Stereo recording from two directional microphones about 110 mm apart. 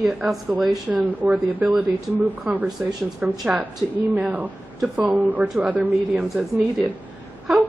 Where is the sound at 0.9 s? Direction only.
15° right (ahead or behind).